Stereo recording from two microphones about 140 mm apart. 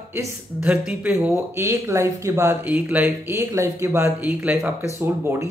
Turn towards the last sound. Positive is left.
turn(degrees=-15)  # may be behind; listen again after turning